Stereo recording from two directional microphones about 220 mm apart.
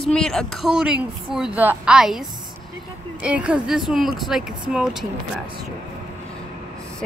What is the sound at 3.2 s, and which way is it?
A woman's voice, 5° right (ahead or behind).